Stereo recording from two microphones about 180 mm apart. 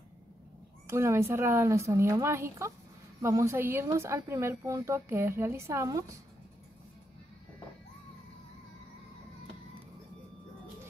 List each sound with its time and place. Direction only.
0.8 s a woman's voice: 15° right (ahead or behind)